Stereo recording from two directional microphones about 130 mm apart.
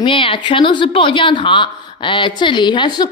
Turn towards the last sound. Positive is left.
turn(degrees=35)  # may be behind; listen again after turning